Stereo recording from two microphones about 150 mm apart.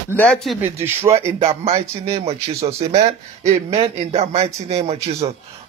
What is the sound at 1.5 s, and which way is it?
Speech, 45° right (ahead or behind).